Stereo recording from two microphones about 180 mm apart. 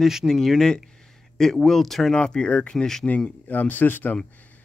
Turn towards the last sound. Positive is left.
turn(degrees=10)  # may be behind; listen again after turning